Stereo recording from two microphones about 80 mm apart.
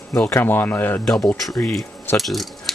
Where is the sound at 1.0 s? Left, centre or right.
Centre.